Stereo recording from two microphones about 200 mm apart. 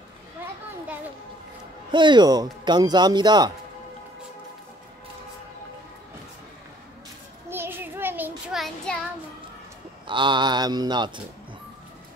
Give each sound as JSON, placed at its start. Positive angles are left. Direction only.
{"t": 1.9, "sound": "speech", "side_deg": -25}
{"t": 7.4, "sound": "child singing", "side_deg": -10}
{"t": 10.0, "sound": "speech", "side_deg": -25}